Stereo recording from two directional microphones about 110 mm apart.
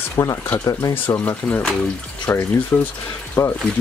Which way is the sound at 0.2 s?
30° left (ahead or behind).